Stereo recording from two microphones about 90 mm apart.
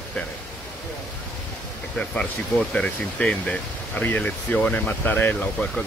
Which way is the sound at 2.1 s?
10° left (ahead or behind).